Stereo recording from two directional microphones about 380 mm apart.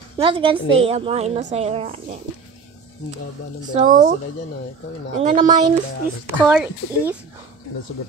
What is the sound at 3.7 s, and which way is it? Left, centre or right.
Speech, centre.